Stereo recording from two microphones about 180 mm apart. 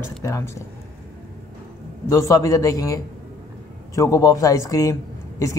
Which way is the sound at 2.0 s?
15° left (ahead or behind).